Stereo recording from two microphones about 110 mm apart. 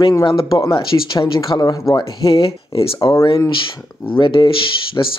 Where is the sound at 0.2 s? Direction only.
55° left (ahead or behind).